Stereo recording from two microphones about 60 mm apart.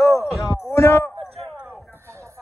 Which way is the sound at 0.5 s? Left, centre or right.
Left.